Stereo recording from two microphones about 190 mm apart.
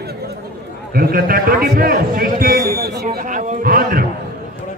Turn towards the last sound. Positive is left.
turn(degrees=-50)  # may be behind; listen again after turning